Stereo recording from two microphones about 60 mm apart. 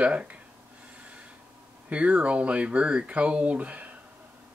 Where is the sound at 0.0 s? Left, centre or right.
Right.